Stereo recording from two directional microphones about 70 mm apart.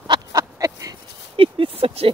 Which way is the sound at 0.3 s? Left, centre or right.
Right.